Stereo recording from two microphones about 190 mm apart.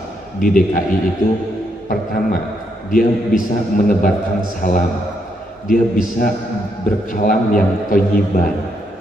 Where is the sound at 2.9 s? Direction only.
45° left (ahead or behind).